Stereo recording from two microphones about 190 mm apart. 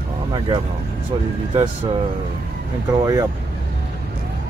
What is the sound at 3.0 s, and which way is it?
Speech, 20° right (ahead or behind).